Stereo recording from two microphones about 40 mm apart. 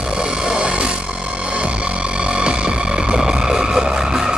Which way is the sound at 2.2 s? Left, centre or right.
Right.